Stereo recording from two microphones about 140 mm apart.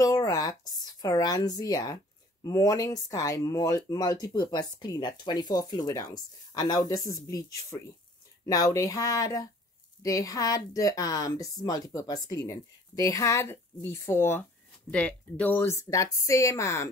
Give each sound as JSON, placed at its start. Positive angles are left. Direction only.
{"t": 0.0, "sound": "a woman's voice", "side_deg": 25}